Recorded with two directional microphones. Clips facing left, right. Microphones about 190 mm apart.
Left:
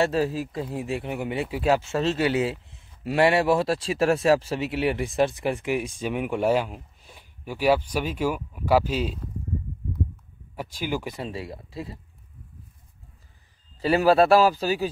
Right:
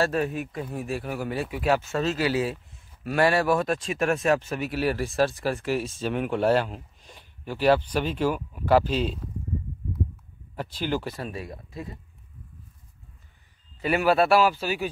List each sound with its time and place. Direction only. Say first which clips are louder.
0.0 s speech: left 2 dB; 30° left (ahead or behind); by 9.2 s 5° left (ahead or behind)
10.5 s speech: right 1 dB; 10° left (ahead or behind)
11.2 s speech: left 2 dB; 25° left (ahead or behind)
13.7 s a man's voice: left 3 dB; 35° left (ahead or behind)